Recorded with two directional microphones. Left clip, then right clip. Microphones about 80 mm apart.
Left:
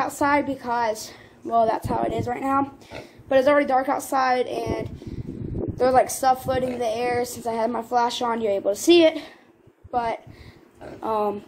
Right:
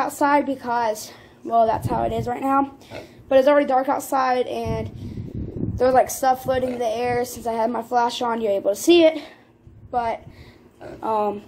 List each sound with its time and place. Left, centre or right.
0.0 s a woman's voice: right
9.0 s a woman's voice: right